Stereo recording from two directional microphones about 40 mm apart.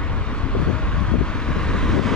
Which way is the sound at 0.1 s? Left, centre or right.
Left.